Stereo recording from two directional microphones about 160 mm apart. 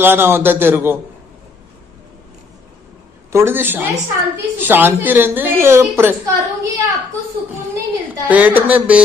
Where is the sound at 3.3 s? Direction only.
15° right (ahead or behind).